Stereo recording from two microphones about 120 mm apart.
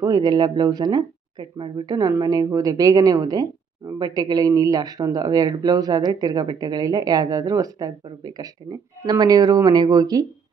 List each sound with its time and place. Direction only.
0.0 s speech: 35° right (ahead or behind)